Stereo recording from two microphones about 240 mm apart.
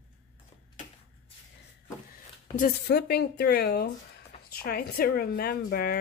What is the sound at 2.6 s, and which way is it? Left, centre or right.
Speech, left.